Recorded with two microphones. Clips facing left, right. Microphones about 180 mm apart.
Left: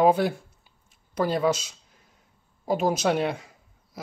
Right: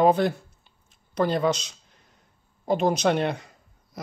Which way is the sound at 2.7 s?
5° left (ahead or behind).